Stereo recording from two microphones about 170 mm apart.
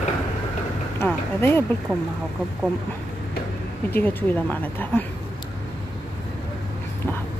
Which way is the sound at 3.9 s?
10° left (ahead or behind).